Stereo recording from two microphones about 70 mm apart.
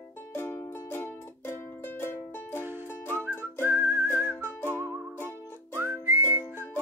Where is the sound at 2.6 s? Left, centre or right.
Right.